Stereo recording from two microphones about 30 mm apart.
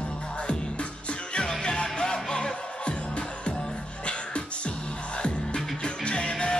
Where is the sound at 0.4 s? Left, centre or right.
Left.